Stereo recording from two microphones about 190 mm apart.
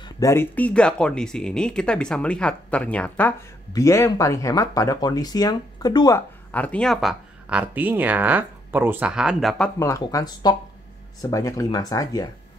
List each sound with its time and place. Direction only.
0.0 s speech: 15° left (ahead or behind); by 9.7 s centre (ahead or behind)
9.8 s speech: 15° left (ahead or behind)